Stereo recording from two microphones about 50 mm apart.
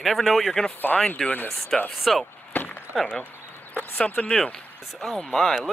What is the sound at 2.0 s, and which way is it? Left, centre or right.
Speech, centre.